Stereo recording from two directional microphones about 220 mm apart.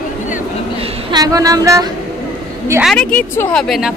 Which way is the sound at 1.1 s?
15° right (ahead or behind).